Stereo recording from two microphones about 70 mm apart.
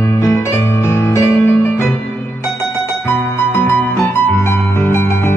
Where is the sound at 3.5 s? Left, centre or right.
Left.